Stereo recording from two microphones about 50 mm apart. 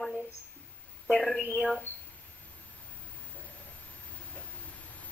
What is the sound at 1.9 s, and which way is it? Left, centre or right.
Speech, left.